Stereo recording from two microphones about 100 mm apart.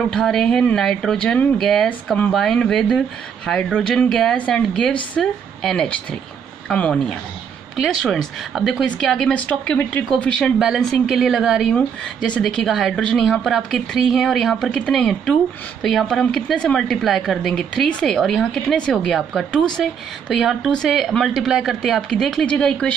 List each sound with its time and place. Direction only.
0.1 s speech: 5° left (ahead or behind)
1.9 s a woman's voice: 15° left (ahead or behind)
2.3 s a woman's voice: 5° left (ahead or behind)